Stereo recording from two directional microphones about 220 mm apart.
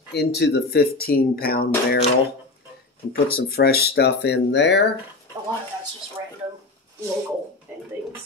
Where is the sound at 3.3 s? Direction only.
45° left (ahead or behind).